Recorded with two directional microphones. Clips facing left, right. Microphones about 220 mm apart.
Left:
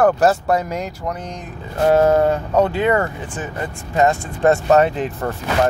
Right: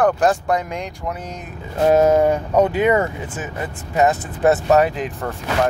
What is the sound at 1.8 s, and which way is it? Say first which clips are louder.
Speech: even; 15° right (ahead or behind).